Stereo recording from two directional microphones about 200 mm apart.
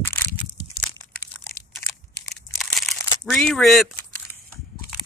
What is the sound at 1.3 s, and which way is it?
Crunch, 10° right (ahead or behind).